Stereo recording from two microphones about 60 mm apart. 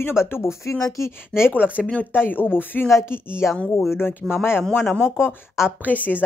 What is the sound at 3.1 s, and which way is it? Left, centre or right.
Speech, left.